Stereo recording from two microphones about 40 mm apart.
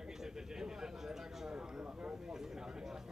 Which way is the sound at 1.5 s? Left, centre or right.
Right.